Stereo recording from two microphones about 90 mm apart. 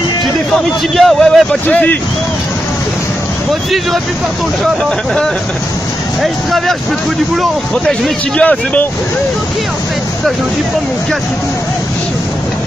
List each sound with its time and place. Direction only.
0.6 s a man's voice: centre (ahead or behind)
1.7 s speech: 15° left (ahead or behind)
8.4 s speech: 15° left (ahead or behind)